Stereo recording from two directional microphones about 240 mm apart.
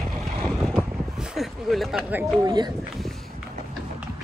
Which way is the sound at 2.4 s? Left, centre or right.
Centre.